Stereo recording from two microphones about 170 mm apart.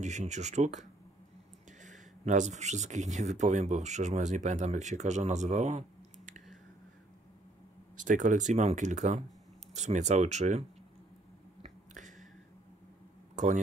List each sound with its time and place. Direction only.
0.0 s speech: 45° right (ahead or behind)
8.0 s speech: 50° right (ahead or behind)
11.6 s a sound: 45° right (ahead or behind)